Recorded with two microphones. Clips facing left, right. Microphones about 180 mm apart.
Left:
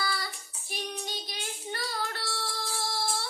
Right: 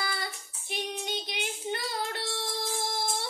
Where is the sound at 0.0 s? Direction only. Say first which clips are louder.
Left 1 dB; 20° right (ahead or behind).